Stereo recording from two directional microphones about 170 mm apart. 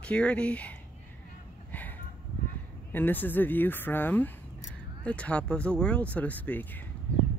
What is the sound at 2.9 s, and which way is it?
Speech, 10° left (ahead or behind).